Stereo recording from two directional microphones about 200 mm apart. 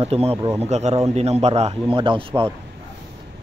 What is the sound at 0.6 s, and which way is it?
A man's voice, 35° right (ahead or behind).